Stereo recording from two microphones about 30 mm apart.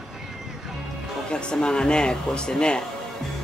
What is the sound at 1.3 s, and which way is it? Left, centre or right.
Speech, left.